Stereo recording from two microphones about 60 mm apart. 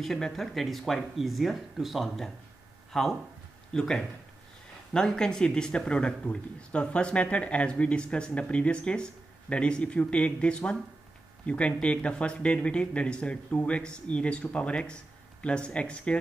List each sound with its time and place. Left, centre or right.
0.0 s speech: centre